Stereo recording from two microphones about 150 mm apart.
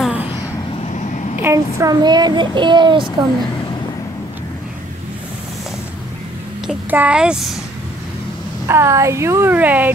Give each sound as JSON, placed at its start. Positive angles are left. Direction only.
{"t": 0.0, "sound": "a sound", "side_deg": -10}
{"t": 0.7, "sound": "vehicle", "side_deg": 50}
{"t": 1.4, "sound": "speech", "side_deg": -20}
{"t": 6.7, "sound": "a child's voice", "side_deg": -10}
{"t": 8.6, "sound": "speech", "side_deg": -20}